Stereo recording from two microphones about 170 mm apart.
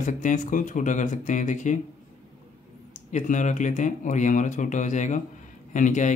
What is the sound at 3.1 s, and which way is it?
Speech, 45° left (ahead or behind).